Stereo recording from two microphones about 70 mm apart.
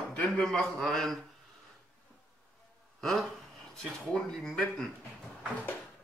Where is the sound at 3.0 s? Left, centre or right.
Centre.